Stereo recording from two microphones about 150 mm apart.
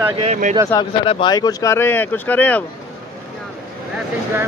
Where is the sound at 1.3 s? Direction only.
25° left (ahead or behind).